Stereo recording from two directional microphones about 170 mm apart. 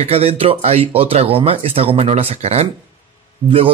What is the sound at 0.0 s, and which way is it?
Speech, 35° right (ahead or behind).